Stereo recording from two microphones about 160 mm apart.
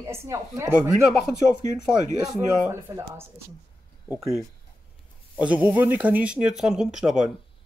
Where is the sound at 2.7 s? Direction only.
15° right (ahead or behind).